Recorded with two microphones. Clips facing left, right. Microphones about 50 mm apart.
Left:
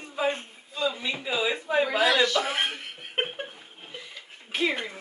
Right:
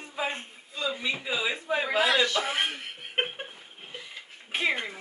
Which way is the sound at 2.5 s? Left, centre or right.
Centre.